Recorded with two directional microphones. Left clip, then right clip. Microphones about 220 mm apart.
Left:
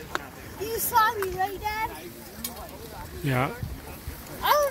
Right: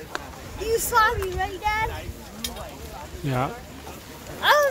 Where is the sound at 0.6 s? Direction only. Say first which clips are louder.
Right 3 dB; 5° right (ahead or behind).